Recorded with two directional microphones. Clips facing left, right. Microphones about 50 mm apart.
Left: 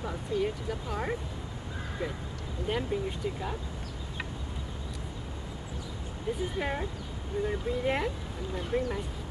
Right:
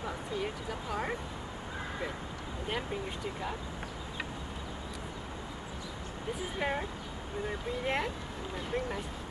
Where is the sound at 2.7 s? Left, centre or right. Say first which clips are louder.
Left 5 dB; centre.